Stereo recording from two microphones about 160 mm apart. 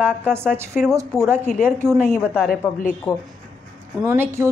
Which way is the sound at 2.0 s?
15° left (ahead or behind).